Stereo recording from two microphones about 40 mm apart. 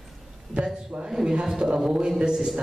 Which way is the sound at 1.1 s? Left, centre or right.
Centre.